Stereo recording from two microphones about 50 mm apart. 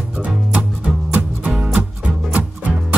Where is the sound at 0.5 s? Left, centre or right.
Right.